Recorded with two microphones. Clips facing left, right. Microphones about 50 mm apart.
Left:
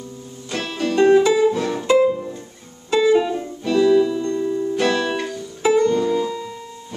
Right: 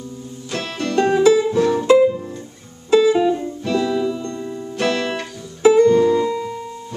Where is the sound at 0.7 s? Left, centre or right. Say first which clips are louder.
Left 3 dB; centre.